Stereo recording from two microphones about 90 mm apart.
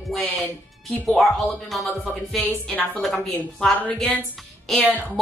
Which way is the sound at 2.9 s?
5° left (ahead or behind).